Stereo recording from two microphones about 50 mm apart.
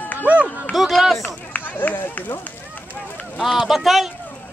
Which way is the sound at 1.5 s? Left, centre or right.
Left.